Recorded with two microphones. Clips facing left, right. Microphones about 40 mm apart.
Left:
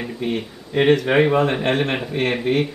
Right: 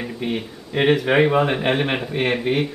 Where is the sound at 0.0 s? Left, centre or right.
Centre.